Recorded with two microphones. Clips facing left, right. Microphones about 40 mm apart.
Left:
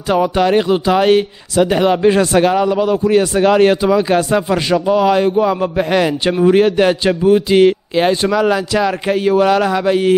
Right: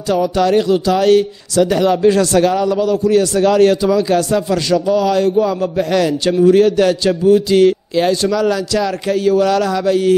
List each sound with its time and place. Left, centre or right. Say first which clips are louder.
0.1 s speech: left 1 dB; left